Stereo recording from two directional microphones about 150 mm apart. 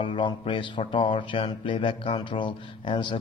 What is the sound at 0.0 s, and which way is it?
Speech, 35° left (ahead or behind).